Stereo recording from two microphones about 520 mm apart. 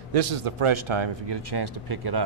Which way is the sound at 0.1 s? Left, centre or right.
Right.